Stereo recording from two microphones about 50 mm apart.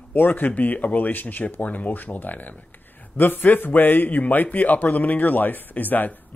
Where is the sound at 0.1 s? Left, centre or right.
Left.